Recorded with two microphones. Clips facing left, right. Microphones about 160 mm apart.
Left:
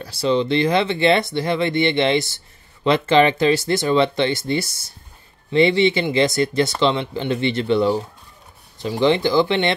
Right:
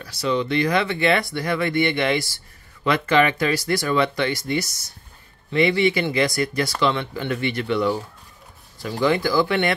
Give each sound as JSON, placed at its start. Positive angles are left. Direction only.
{"t": 0.0, "sound": "speech", "side_deg": 30}